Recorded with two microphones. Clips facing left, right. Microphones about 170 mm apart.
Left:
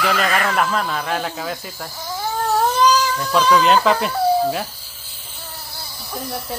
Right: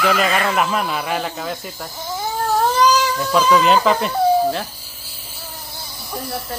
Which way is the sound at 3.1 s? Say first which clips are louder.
Right 1 dB; 5° right (ahead or behind).